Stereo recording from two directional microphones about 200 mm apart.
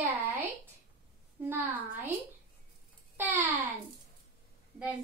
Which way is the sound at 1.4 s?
10° right (ahead or behind).